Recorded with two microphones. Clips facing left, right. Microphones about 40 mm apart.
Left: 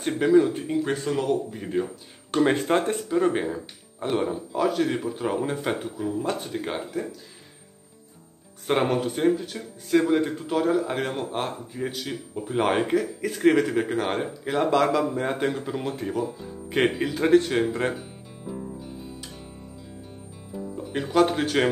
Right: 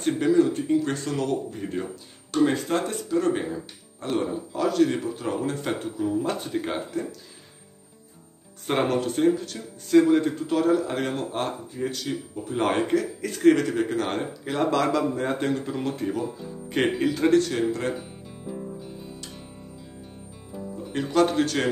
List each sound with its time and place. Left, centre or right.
0.0 s speech: centre
2.3 s speech: left; by 7.2 s centre
8.6 s speech: centre
17.4 s speech: left
18.5 s music: centre
20.9 s speech: centre